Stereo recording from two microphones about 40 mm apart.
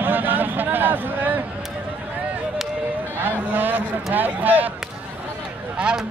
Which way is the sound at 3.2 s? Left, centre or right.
Right.